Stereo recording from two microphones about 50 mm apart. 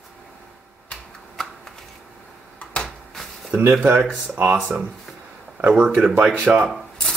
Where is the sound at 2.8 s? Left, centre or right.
Centre.